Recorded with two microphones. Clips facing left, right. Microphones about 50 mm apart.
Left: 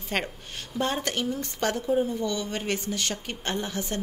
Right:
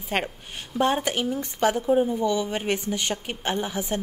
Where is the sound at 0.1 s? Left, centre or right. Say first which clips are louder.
Right 2 dB; centre.